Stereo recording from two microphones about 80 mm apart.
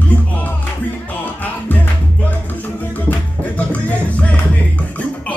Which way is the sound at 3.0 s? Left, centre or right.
Centre.